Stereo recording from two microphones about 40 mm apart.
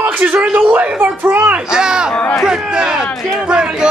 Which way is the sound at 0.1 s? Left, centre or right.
Right.